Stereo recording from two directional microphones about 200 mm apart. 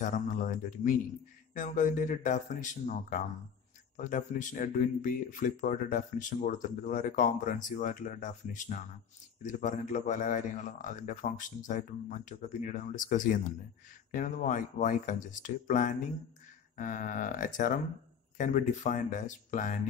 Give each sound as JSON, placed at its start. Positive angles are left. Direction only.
{"t": 0.0, "sound": "speech", "side_deg": 40}